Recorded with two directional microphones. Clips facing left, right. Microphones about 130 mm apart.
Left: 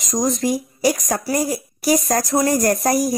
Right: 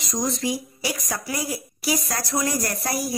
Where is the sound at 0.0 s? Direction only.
45° left (ahead or behind).